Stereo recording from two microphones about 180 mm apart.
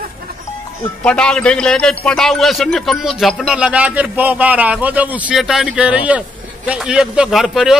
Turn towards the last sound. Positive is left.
turn(degrees=0)  # may be behind; listen again after turning